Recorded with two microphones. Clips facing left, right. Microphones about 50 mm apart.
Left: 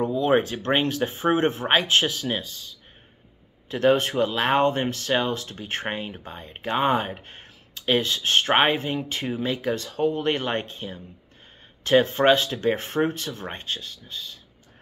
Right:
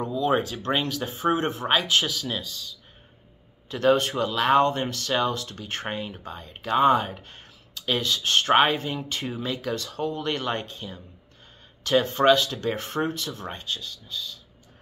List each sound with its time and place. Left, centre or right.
0.0 s speech: left
3.6 s speech: centre